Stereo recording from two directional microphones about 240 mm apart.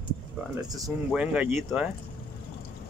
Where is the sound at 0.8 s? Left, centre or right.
Centre.